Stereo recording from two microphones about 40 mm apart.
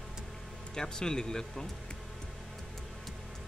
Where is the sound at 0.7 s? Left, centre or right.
Centre.